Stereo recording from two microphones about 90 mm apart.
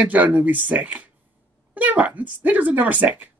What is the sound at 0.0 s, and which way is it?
Speech, 15° right (ahead or behind).